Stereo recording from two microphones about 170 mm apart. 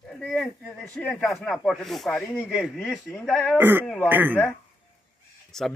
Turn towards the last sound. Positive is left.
turn(degrees=5)  # may be behind; listen again after turning